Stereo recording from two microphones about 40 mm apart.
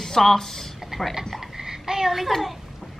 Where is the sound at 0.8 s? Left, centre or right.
Centre.